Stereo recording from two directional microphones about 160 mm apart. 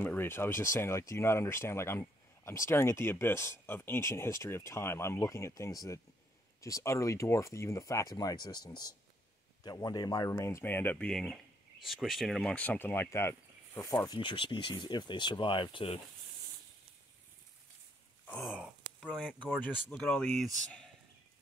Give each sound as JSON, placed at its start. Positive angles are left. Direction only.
{"t": 0.0, "sound": "speech", "side_deg": 10}
{"t": 18.4, "sound": "speech", "side_deg": 0}